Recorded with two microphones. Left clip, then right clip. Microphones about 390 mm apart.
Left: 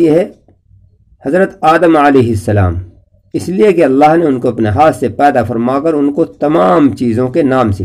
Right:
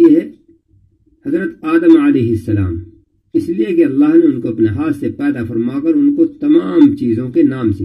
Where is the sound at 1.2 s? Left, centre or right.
Left.